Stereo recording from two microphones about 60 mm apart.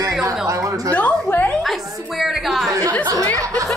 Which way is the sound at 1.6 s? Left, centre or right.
Centre.